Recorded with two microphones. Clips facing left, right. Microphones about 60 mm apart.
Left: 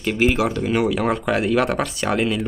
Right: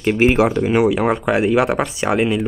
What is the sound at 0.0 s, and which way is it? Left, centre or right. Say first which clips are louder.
Speech: right 5 dB; right.